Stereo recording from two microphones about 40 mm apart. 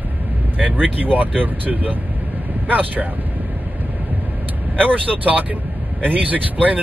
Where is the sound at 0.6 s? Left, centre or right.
Right.